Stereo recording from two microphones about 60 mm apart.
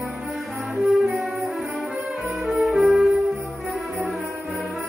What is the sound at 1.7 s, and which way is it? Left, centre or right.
Brass instrument, centre.